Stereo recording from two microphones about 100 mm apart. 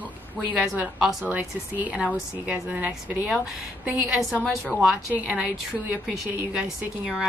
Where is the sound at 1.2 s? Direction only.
15° right (ahead or behind).